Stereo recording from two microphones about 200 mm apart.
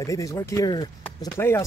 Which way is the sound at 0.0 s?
15° left (ahead or behind).